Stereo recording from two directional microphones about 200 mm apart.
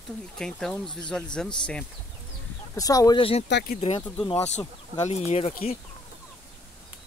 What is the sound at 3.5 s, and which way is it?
Speech, 60° left (ahead or behind).